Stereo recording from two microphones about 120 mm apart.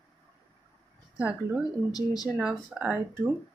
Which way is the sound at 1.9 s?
35° left (ahead or behind).